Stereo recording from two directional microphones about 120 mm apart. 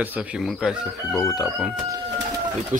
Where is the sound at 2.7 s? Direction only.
90° right.